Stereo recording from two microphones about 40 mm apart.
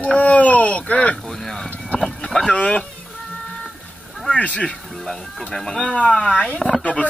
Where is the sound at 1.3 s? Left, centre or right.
Centre.